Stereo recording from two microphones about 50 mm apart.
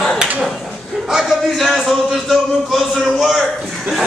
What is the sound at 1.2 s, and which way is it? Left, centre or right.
Speech, centre.